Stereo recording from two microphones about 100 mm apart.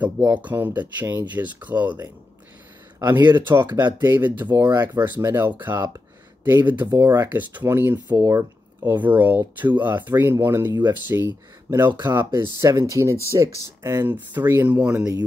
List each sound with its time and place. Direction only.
0.0 s speech: 15° right (ahead or behind)
5.9 s a sound: 25° right (ahead or behind)
7.0 s speech: 20° right (ahead or behind)